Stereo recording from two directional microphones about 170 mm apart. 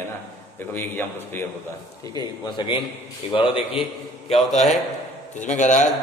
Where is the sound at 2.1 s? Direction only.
25° left (ahead or behind); by 5.9 s 45° left (ahead or behind).